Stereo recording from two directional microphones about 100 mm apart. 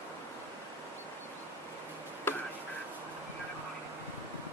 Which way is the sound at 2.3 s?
20° left (ahead or behind).